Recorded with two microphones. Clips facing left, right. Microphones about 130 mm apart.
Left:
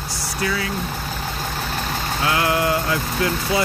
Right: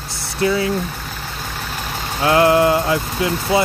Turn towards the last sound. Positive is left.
turn(degrees=-25)  # may be behind; listen again after turning